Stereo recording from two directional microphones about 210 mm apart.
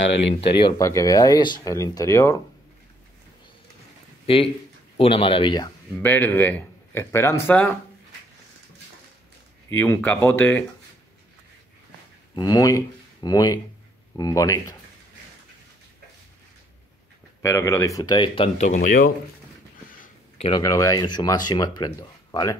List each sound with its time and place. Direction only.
0.6 s speech: 20° left (ahead or behind)
4.9 s speech: 25° left (ahead or behind)
6.0 s speech: 10° left (ahead or behind)
9.7 s speech: 10° left (ahead or behind)
12.4 s speech: 20° left (ahead or behind)
17.4 s speech: 15° left (ahead or behind); by 19.1 s 40° left (ahead or behind)
20.0 s speech: 30° left (ahead or behind)